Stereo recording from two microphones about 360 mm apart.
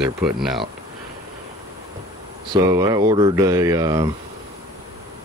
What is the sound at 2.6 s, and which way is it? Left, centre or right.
Speech, centre.